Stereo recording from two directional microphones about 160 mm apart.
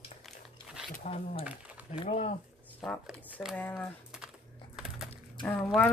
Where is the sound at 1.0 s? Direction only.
40° left (ahead or behind).